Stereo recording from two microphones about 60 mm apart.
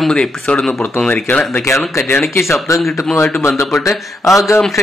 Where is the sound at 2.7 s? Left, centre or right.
Left.